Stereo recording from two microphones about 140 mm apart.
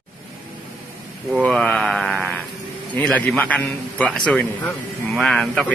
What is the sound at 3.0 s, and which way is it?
A man's voice, 10° left (ahead or behind).